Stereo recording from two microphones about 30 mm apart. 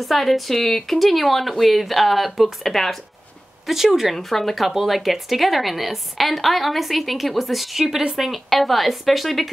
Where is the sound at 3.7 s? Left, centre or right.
Centre.